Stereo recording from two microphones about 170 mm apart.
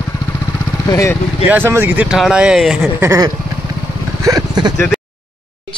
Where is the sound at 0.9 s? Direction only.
15° left (ahead or behind).